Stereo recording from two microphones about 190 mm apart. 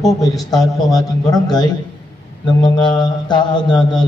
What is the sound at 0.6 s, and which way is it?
A man's voice, 20° left (ahead or behind).